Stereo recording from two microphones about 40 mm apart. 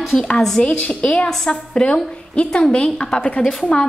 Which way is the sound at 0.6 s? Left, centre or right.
Left.